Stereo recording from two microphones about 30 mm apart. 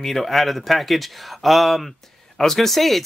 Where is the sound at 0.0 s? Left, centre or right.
Centre.